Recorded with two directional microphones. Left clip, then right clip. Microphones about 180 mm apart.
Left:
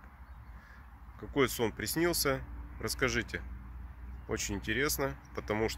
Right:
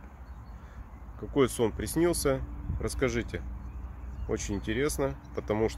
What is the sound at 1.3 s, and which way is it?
Speech, 10° right (ahead or behind).